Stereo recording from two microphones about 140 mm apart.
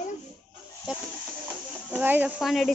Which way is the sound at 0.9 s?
5° right (ahead or behind).